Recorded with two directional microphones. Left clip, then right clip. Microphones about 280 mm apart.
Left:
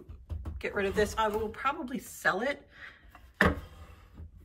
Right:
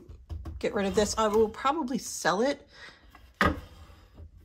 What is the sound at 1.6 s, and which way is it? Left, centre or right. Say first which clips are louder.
A woman's voice: right 4 dB; centre.